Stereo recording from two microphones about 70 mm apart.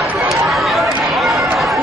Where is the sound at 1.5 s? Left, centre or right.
Centre.